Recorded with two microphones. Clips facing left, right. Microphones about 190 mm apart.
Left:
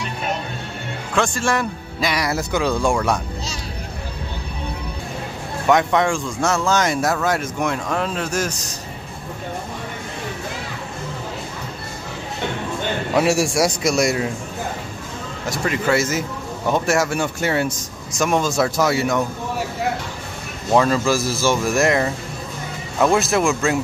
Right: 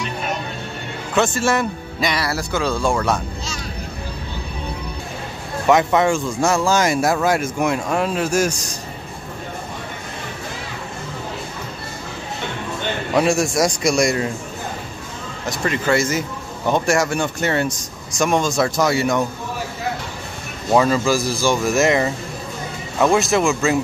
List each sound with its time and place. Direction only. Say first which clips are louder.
1.1 s a man's voice: right 2 dB; 5° right (ahead or behind)
2.1 s speech: left 1 dB; 15° left (ahead or behind)
5.7 s speech: right 2 dB; 5° right (ahead or behind)
13.1 s a man's voice: right 1 dB; 5° left (ahead or behind)
15.5 s a man's voice: even; 5° left (ahead or behind)
20.7 s a man's voice: right 1 dB; 5° right (ahead or behind)